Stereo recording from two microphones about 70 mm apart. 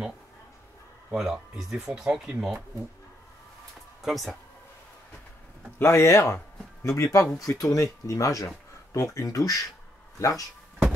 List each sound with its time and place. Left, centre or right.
1.1 s speech: centre
4.0 s speech: centre
5.8 s speech: left